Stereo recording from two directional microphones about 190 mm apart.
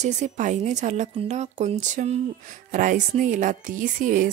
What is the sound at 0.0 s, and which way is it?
Speech, 40° right (ahead or behind).